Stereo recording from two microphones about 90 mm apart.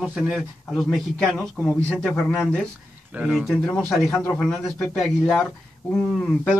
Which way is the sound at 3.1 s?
15° right (ahead or behind).